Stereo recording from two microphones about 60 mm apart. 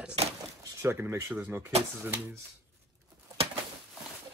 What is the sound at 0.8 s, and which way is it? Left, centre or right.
Speech, right.